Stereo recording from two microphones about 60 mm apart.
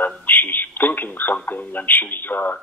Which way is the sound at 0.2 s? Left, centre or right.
Left.